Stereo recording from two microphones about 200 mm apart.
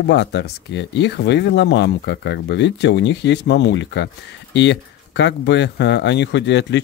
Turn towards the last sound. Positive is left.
turn(degrees=60)  # may be behind; listen again after turning